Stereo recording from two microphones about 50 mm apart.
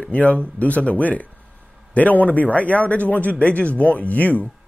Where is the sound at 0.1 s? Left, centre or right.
Left.